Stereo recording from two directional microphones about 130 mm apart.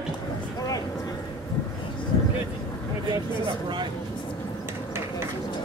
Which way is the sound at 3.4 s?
40° right (ahead or behind).